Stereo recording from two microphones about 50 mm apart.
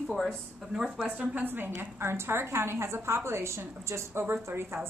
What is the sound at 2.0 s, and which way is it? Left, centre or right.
A woman's voice, right.